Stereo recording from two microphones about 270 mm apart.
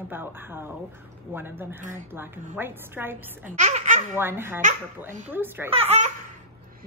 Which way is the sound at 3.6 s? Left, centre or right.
Right.